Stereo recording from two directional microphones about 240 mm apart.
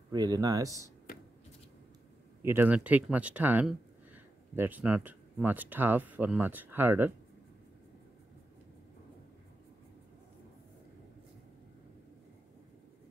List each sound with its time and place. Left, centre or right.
0.1 s speech: centre
2.4 s speech: centre